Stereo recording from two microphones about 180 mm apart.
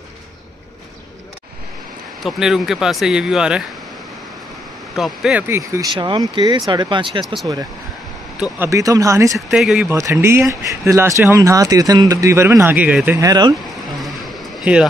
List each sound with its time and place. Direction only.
2.2 s speech: centre (ahead or behind)
4.9 s speech: centre (ahead or behind)
5.5 s speech: 15° right (ahead or behind)
8.4 s speech: 15° right (ahead or behind)
9.5 s speech: 5° right (ahead or behind)
9.8 s speech: 15° right (ahead or behind)
13.3 s speech: 20° right (ahead or behind)
14.0 s a sound: centre (ahead or behind)